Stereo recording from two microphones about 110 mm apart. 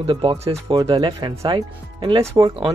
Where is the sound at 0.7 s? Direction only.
35° right (ahead or behind).